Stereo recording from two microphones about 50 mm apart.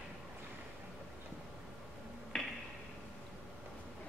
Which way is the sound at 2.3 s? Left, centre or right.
Centre.